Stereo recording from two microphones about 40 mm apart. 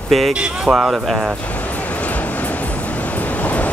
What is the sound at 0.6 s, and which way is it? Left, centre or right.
Speech, centre.